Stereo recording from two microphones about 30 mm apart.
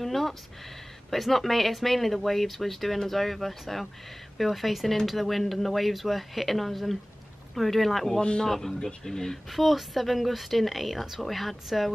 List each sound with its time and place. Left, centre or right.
0.0 s a sound: centre
1.1 s speech: centre
9.5 s speech: centre